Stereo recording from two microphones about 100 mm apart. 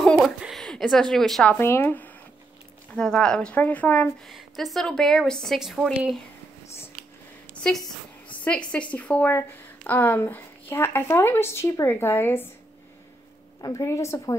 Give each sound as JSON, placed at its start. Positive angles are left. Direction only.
{"t": 0.6, "sound": "a woman's voice", "side_deg": 5}
{"t": 1.6, "sound": "speech", "side_deg": 20}
{"t": 2.9, "sound": "speech", "side_deg": 5}
{"t": 4.3, "sound": "a woman's voice", "side_deg": 0}
{"t": 7.6, "sound": "a sound", "side_deg": 15}
{"t": 8.3, "sound": "speech", "side_deg": 10}
{"t": 13.6, "sound": "a woman's voice", "side_deg": 35}